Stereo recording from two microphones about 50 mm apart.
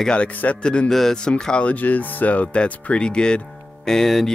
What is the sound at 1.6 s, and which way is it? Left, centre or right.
Speech, left.